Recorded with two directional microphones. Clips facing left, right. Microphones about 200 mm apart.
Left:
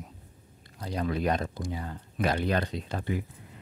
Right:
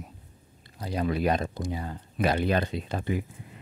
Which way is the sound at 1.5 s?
20° right (ahead or behind).